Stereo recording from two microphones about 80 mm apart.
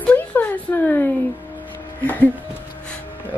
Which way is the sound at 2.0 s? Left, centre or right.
Left.